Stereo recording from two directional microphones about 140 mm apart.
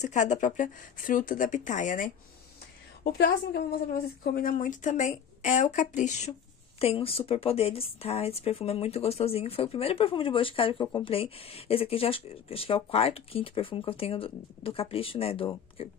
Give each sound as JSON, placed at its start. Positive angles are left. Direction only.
{"t": 0.0, "sound": "speech", "side_deg": 60}
{"t": 3.0, "sound": "speech", "side_deg": 90}
{"t": 6.8, "sound": "speech", "side_deg": 45}